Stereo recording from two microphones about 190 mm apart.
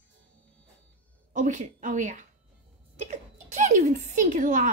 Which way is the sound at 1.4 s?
40° right (ahead or behind).